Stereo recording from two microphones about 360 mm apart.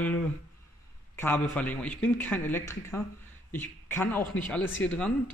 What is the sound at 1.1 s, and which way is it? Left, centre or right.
Speech, centre.